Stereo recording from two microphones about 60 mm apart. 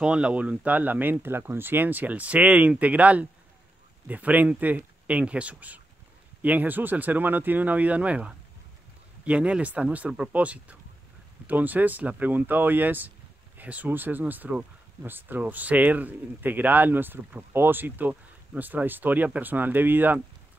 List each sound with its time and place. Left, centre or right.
0.0 s speech: centre
1.2 s speech: right